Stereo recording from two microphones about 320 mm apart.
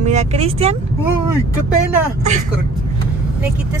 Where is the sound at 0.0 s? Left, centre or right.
Right.